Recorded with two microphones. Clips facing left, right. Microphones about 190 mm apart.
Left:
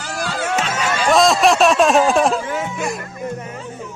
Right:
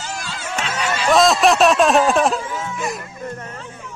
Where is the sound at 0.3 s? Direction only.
60° left (ahead or behind).